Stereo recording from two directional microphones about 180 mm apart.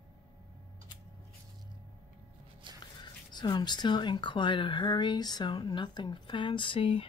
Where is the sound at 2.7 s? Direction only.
25° right (ahead or behind).